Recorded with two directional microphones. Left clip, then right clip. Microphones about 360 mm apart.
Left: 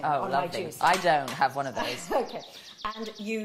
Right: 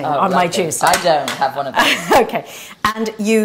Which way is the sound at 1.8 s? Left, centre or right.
Right.